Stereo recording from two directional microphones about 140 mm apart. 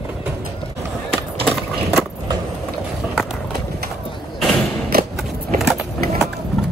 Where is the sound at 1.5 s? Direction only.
Centre (ahead or behind).